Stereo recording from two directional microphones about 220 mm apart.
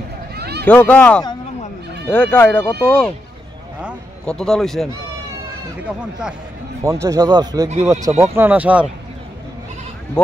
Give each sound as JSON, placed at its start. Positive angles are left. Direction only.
{"t": 0.4, "sound": "a sound", "side_deg": -50}
{"t": 0.7, "sound": "a man's voice", "side_deg": 5}
{"t": 6.8, "sound": "speech", "side_deg": -15}
{"t": 10.2, "sound": "speech", "side_deg": 5}